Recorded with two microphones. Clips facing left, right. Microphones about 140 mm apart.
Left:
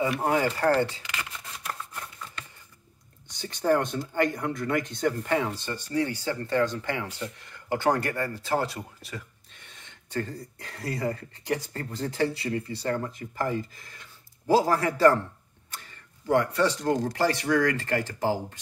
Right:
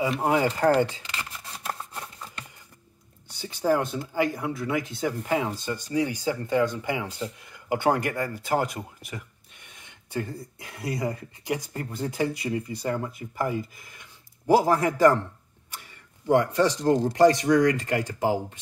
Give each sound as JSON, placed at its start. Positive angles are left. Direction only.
{"t": 0.1, "sound": "speech", "side_deg": -20}
{"t": 3.3, "sound": "speech", "side_deg": -10}